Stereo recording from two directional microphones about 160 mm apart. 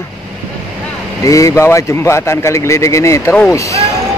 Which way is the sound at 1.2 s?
20° left (ahead or behind).